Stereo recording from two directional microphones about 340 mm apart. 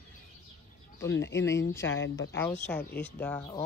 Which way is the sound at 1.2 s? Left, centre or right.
Left.